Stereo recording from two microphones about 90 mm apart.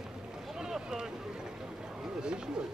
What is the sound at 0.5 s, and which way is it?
Boat, 5° right (ahead or behind).